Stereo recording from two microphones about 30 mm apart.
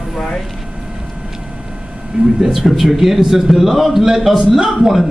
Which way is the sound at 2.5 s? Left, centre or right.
Centre.